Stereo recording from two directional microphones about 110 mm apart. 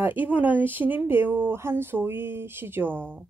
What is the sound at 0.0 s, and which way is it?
Speech, 15° right (ahead or behind).